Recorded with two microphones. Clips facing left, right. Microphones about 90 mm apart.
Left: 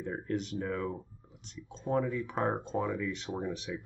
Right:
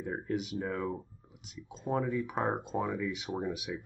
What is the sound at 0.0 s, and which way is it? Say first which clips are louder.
Speech: even; 5° right (ahead or behind).